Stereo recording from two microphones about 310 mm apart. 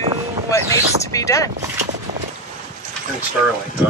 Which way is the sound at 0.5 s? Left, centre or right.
Centre.